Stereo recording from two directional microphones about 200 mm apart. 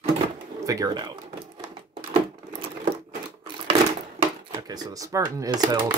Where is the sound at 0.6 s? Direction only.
15° right (ahead or behind).